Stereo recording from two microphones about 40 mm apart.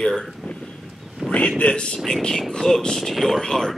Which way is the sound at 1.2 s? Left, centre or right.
Centre.